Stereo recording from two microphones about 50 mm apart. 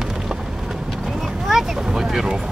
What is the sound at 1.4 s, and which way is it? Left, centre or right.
Vehicle, centre.